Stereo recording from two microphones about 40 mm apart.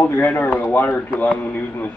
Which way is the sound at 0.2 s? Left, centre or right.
Left.